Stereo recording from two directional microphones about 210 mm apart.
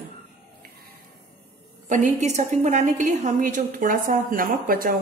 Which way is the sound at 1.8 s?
35° right (ahead or behind).